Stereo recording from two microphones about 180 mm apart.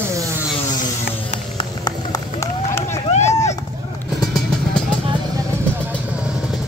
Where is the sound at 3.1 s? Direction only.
40° left (ahead or behind).